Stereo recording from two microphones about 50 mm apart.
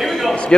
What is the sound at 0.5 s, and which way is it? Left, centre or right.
Speech, centre.